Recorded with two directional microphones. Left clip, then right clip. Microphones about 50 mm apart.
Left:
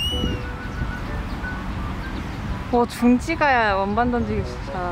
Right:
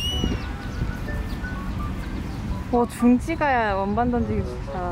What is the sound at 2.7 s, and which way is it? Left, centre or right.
Speech, centre.